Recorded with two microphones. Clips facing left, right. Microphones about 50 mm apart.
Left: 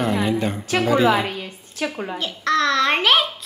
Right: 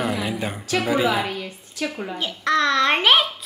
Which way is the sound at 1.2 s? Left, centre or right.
Left.